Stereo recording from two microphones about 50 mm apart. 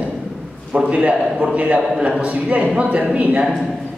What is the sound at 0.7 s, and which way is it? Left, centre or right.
A man's voice, right.